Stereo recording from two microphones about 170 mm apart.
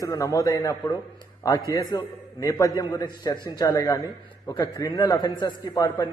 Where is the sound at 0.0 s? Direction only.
20° left (ahead or behind).